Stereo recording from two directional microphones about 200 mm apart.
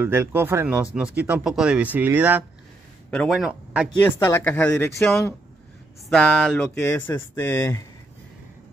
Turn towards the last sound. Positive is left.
turn(degrees=15)  # may be behind; listen again after turning